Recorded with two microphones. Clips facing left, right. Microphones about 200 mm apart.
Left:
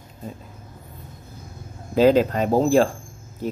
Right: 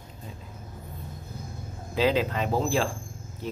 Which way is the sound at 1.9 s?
45° left (ahead or behind).